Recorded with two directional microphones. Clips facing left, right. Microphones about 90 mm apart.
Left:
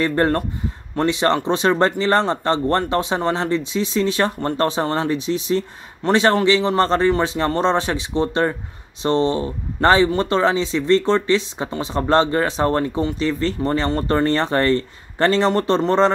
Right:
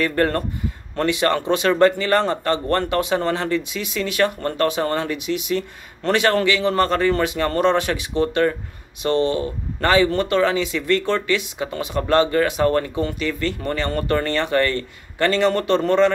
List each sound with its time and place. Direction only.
0.0 s speech: 25° left (ahead or behind)